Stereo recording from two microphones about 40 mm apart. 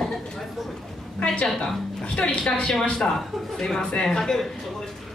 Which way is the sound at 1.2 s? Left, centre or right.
Left.